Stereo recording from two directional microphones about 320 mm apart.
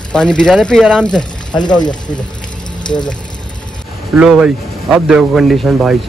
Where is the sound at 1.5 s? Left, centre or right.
Centre.